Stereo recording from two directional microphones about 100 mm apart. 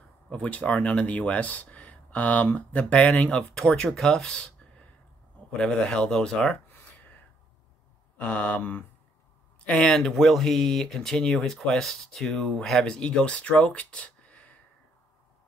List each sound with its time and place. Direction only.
0.3 s speech: 15° left (ahead or behind)
8.2 s speech: 15° left (ahead or behind)